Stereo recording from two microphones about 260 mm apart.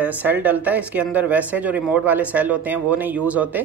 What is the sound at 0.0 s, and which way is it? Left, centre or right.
Speech, centre.